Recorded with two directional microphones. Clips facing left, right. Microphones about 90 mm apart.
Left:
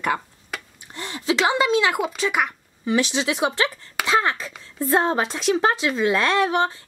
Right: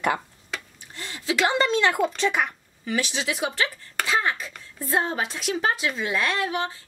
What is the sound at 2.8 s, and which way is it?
Speech, 25° left (ahead or behind).